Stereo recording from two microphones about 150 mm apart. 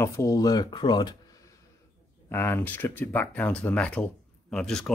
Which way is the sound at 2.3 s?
15° left (ahead or behind).